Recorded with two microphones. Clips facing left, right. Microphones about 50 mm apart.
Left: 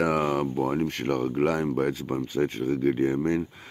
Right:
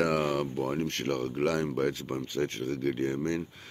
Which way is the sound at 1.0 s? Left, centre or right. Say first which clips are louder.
Left 4 dB; left.